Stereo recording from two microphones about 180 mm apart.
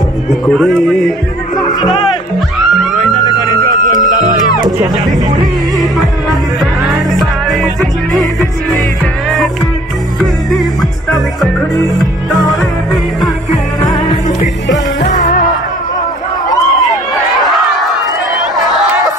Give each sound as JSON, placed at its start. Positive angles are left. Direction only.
{"t": 0.3, "sound": "speech", "side_deg": 0}
{"t": 1.7, "sound": "speech", "side_deg": 20}
{"t": 3.3, "sound": "music", "side_deg": -20}
{"t": 4.0, "sound": "music", "side_deg": -45}
{"t": 6.6, "sound": "music", "side_deg": 0}
{"t": 10.5, "sound": "music", "side_deg": 0}
{"t": 15.0, "sound": "music", "side_deg": 40}